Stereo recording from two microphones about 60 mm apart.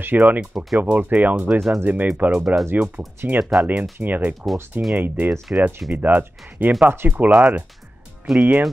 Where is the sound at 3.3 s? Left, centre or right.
Centre.